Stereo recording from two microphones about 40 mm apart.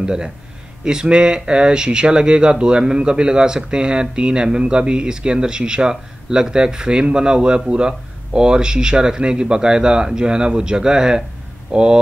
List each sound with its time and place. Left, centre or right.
0.0 s speech: right